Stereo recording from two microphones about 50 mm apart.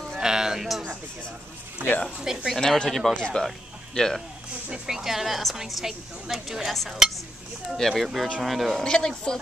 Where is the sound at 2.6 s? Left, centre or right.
Centre.